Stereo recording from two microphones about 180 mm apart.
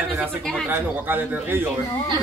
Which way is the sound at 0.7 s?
10° right (ahead or behind).